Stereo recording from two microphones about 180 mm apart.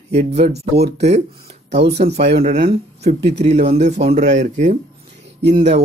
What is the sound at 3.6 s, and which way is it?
Speech, 35° right (ahead or behind).